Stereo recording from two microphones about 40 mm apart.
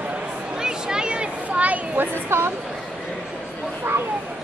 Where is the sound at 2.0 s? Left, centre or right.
Right.